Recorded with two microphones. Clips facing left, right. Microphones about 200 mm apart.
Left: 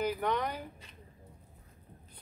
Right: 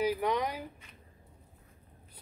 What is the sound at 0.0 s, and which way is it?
Speech, 10° right (ahead or behind).